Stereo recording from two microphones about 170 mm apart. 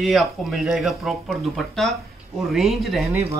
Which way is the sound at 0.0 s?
Centre (ahead or behind).